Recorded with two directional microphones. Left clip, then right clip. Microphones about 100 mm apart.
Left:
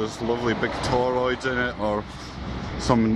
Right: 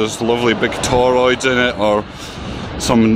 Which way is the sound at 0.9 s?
15° right (ahead or behind).